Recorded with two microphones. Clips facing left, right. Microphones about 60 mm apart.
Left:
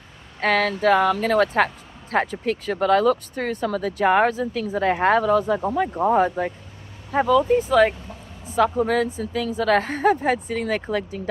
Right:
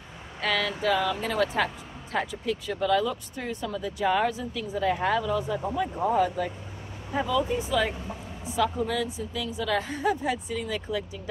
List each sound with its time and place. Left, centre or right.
0.4 s speech: left
6.0 s speech: left